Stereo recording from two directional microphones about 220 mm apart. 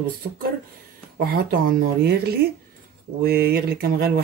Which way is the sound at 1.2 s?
45° right (ahead or behind).